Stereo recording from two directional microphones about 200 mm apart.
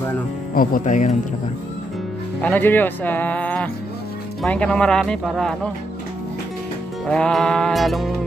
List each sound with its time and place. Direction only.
0.6 s speech: 40° left (ahead or behind)
2.4 s speech: 10° left (ahead or behind)
7.1 s speech: 5° left (ahead or behind)